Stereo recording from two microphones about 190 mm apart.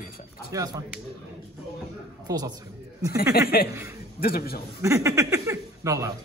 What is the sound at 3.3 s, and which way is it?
A man's voice, 50° left (ahead or behind).